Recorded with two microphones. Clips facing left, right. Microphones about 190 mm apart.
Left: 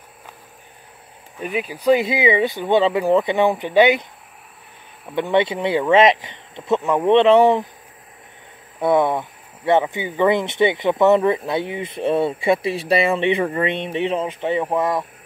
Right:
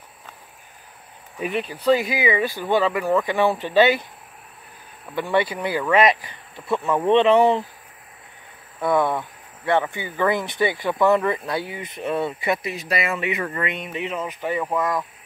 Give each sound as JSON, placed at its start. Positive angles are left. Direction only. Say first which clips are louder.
{"t": 1.4, "sound": "speech", "louder": "left 1 dB", "side_deg": 5}
{"t": 1.9, "sound": "speech", "louder": "left 3 dB", "side_deg": 20}
{"t": 7.2, "sound": "speech", "louder": "left 3 dB", "side_deg": -10}
{"t": 8.7, "sound": "speech", "louder": "left 3 dB", "side_deg": 20}